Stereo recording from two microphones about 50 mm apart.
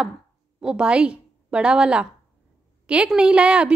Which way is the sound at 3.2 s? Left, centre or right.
Centre.